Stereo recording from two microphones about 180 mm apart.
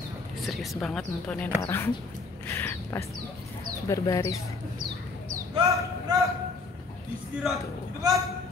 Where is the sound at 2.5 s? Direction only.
10° left (ahead or behind).